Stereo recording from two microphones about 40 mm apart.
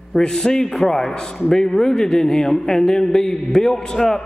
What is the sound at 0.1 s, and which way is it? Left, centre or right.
A man's voice, centre.